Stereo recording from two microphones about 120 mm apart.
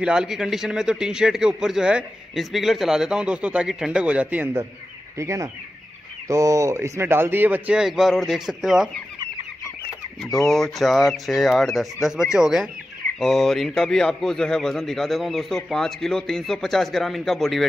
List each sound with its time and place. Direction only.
0.0 s a man's voice: 5° right (ahead or behind)
5.1 s speech: 25° right (ahead or behind); by 8.9 s centre (ahead or behind)
10.4 s a man's voice: centre (ahead or behind)